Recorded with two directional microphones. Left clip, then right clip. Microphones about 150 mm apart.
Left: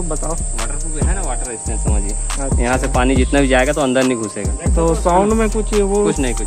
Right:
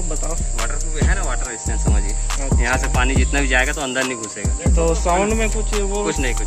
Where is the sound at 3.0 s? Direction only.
65° left (ahead or behind).